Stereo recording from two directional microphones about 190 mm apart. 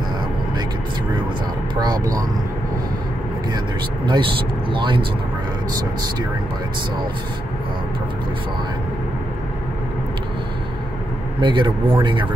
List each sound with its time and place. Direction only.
3.5 s speech: 25° right (ahead or behind)
11.4 s speech: 25° right (ahead or behind)